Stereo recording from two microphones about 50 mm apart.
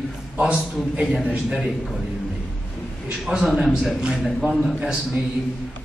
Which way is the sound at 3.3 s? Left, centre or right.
Centre.